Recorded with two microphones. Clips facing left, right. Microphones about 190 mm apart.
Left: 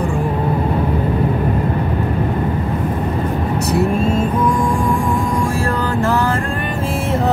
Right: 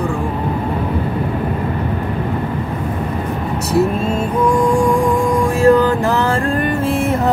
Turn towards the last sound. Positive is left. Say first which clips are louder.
# right 7 dB
turn(degrees=-15)  # may be behind; listen again after turning